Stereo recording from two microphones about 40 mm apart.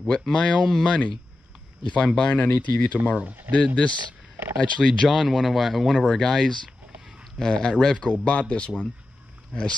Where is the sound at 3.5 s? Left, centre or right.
Right.